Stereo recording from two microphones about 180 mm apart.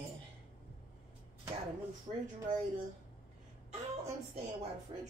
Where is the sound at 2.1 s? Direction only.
40° right (ahead or behind).